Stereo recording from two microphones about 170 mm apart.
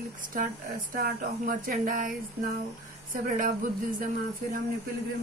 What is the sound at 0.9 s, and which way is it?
Speech, 55° right (ahead or behind).